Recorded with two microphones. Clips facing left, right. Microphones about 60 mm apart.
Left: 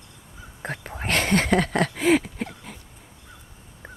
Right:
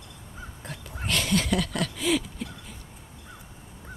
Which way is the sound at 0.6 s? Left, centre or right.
Left.